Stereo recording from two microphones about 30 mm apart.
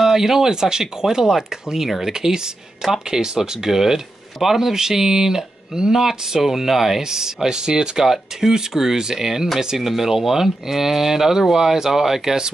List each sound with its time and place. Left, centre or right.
0.0 s speech: centre
9.8 s speech: centre